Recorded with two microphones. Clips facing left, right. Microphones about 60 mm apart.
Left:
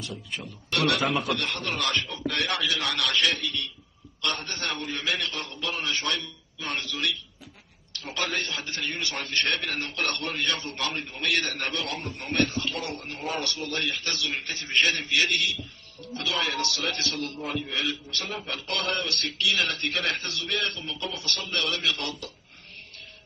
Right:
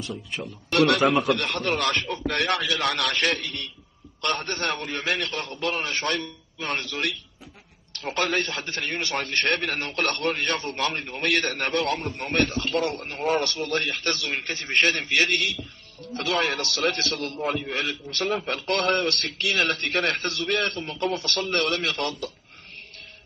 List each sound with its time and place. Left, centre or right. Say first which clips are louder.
0.7 s a man's voice: right 6 dB; right